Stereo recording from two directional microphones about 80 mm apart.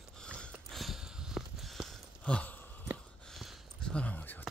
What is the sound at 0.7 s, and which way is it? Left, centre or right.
Sniff, centre.